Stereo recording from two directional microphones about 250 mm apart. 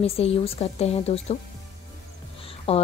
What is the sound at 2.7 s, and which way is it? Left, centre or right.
Speech, left.